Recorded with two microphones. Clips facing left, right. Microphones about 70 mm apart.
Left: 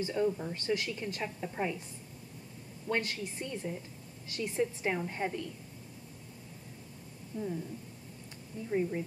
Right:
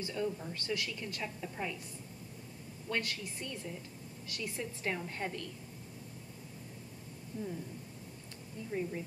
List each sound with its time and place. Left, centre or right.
0.0 s a woman's voice: left
2.9 s a woman's voice: left
7.3 s a woman's voice: left
8.6 s a woman's voice: left